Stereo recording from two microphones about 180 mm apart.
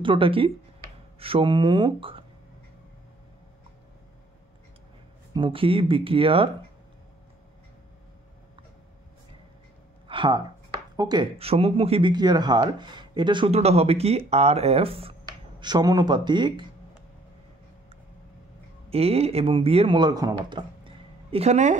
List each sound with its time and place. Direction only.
0.0 s speech: 30° right (ahead or behind)
5.3 s speech: 30° right (ahead or behind)
10.0 s speech: 25° right (ahead or behind)
15.6 s speech: 20° right (ahead or behind)
18.9 s speech: 35° right (ahead or behind)